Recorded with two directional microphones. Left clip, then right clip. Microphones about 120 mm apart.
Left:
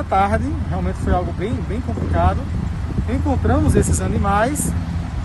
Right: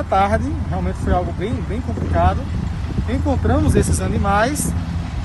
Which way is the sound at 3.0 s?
5° left (ahead or behind).